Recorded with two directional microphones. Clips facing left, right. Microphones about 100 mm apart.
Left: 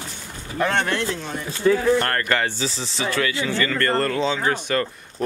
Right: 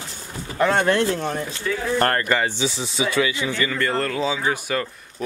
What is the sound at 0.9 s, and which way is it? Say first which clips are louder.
Speech: right 5 dB; 45° right (ahead or behind).